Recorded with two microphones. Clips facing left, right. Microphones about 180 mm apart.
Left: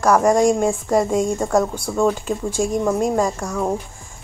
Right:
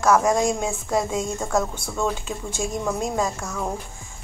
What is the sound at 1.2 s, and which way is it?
Speech, 10° left (ahead or behind).